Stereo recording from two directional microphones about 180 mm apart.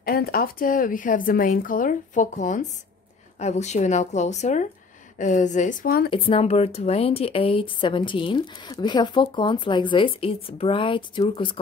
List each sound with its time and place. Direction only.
0.0 s speech: 55° left (ahead or behind)
6.0 s speech: 30° left (ahead or behind)